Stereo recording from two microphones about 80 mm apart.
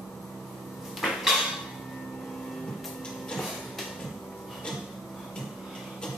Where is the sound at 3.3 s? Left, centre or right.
Centre.